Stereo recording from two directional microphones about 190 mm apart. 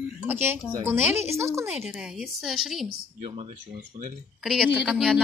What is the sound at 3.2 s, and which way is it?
Speech, 30° right (ahead or behind).